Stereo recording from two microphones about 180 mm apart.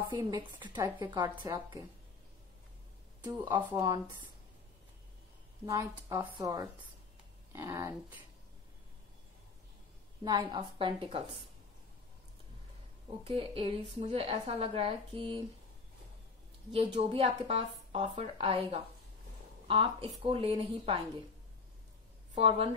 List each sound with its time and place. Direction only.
0.1 s a woman's voice: 25° right (ahead or behind)
3.3 s a woman's voice: 20° right (ahead or behind)
5.7 s a woman's voice: 20° right (ahead or behind)
10.2 s a woman's voice: 25° right (ahead or behind)
13.2 s a woman's voice: 30° right (ahead or behind)
16.7 s a woman's voice: 30° right (ahead or behind)
22.3 s a woman's voice: 30° right (ahead or behind)